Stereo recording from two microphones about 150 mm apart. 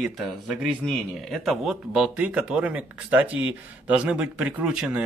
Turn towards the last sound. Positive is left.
turn(degrees=-5)  # may be behind; listen again after turning